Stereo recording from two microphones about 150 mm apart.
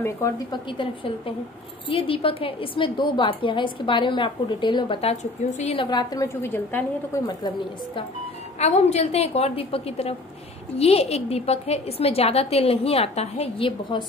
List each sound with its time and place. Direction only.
0.5 s a woman's voice: 35° left (ahead or behind)
5.1 s a woman's voice: 50° left (ahead or behind)
5.8 s a woman's voice: 30° left (ahead or behind); by 7.2 s 15° left (ahead or behind)
7.2 s a woman's voice: 30° left (ahead or behind)
8.5 s a woman's voice: 45° left (ahead or behind)